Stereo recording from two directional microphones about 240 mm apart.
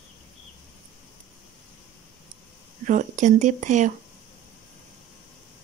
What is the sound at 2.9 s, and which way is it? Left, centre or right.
Speech, right.